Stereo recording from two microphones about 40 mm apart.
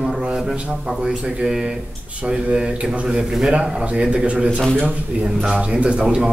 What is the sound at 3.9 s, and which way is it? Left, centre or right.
Speech, right.